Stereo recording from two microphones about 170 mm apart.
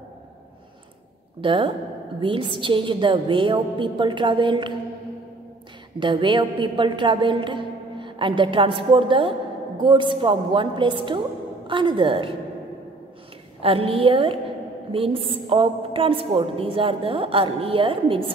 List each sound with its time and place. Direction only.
1.4 s a woman's voice: 30° right (ahead or behind)
5.9 s a woman's voice: 30° right (ahead or behind)
13.6 s a woman's voice: 35° right (ahead or behind)